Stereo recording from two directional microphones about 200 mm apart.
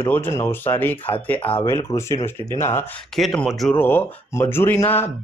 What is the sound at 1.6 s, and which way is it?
Speech, 15° left (ahead or behind).